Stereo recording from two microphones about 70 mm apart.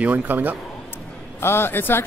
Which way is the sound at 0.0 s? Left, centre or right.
Right.